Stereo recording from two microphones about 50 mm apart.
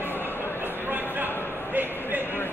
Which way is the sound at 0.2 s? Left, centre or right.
Right.